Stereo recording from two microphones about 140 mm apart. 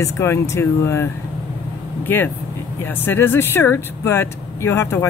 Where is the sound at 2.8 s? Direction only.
15° left (ahead or behind).